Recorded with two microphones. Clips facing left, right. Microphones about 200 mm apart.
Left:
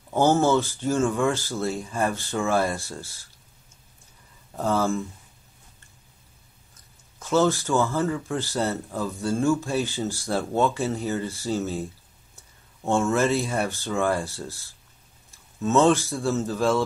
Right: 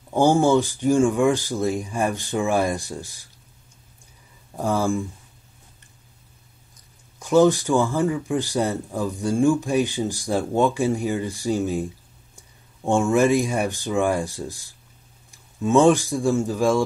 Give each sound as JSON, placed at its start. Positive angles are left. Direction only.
{"t": 0.1, "sound": "speech", "side_deg": -15}
{"t": 4.6, "sound": "speech", "side_deg": -10}
{"t": 6.7, "sound": "a man's voice", "side_deg": -15}